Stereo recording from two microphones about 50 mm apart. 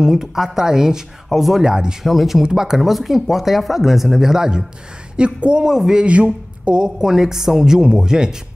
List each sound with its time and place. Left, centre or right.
0.0 s a woman's voice: centre
2.0 s speech: centre
2.4 s a woman's voice: centre
2.9 s a woman's voice: centre
6.0 s a woman's voice: right